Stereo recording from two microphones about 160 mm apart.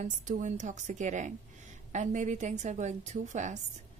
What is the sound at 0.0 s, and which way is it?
A woman's voice, 50° right (ahead or behind).